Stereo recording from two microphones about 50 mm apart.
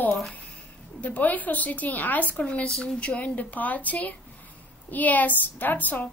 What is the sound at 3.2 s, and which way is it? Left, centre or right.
A woman's voice, left.